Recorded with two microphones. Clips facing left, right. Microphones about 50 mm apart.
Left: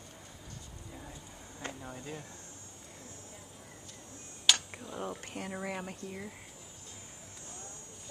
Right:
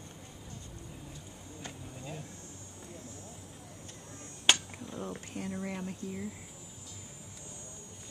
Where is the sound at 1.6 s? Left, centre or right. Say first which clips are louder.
Left 5 dB; left.